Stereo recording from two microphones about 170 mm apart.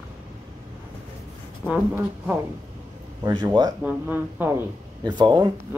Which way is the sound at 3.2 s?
25° right (ahead or behind).